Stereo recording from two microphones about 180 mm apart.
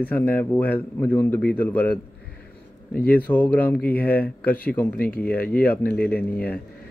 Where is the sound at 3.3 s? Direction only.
10° left (ahead or behind).